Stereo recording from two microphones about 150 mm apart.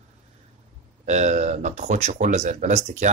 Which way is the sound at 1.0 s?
50° right (ahead or behind).